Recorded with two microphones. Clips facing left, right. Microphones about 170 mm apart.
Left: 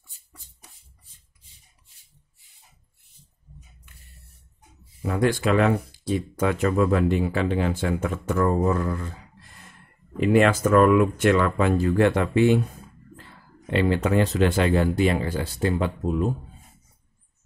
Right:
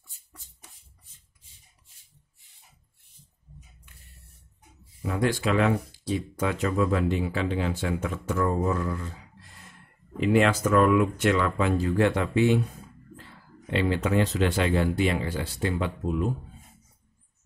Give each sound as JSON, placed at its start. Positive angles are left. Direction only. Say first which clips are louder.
{"t": 5.0, "sound": "speech", "louder": "left 3 dB", "side_deg": 55}
{"t": 10.2, "sound": "speech", "louder": "left 3 dB", "side_deg": 55}
{"t": 13.7, "sound": "speech", "louder": "left 3 dB", "side_deg": 50}